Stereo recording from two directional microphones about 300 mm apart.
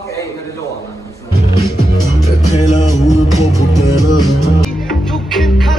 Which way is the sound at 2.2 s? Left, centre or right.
Left.